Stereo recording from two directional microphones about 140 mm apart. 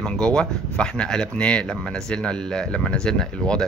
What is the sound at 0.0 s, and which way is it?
Speech, 5° left (ahead or behind).